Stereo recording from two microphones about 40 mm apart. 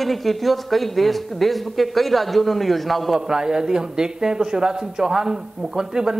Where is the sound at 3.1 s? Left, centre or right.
Centre.